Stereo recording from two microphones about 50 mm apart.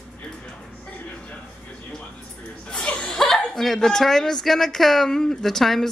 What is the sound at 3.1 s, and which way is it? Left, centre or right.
A woman's voice, centre.